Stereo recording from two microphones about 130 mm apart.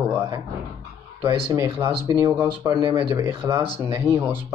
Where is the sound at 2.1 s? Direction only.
20° right (ahead or behind).